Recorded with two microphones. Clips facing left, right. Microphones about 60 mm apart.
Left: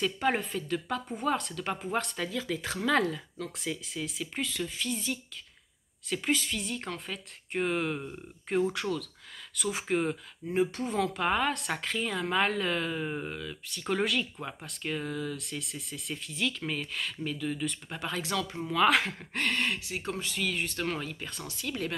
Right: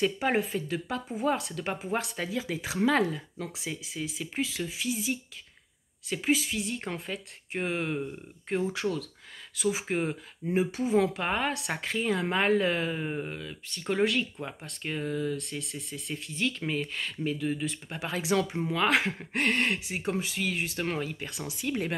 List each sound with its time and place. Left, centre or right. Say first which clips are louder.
0.0 s speech: right 2 dB; centre
18.3 s speech: right 9 dB; right
18.7 s speech: left 4 dB; centre
19.3 s speech: right 3 dB; right